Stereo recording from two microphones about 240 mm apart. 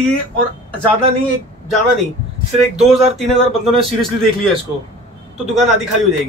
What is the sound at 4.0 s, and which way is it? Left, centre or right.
Speech, centre.